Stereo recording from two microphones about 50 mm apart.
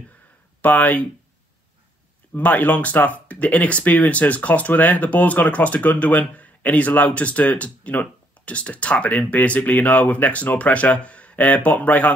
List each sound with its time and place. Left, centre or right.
0.6 s speech: left
2.3 s speech: left